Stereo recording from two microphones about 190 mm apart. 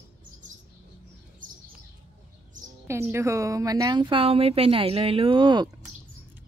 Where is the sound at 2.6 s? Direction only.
45° right (ahead or behind).